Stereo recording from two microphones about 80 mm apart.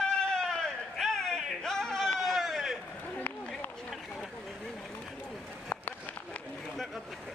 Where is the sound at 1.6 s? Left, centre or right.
Centre.